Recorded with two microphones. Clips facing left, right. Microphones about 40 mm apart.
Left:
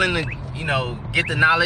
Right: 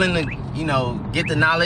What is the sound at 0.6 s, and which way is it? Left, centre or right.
Speech, left.